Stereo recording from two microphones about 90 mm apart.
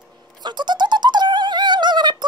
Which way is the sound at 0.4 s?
55° right (ahead or behind).